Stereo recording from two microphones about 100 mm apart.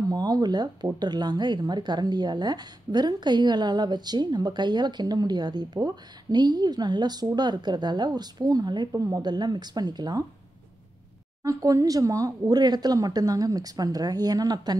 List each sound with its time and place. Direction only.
0.1 s speech: 40° right (ahead or behind)
11.4 s speech: 35° right (ahead or behind)